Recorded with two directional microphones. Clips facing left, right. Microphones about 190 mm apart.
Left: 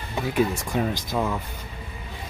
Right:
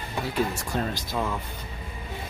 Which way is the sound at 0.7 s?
10° left (ahead or behind).